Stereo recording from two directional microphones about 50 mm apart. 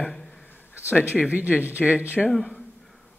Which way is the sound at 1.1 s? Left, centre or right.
Right.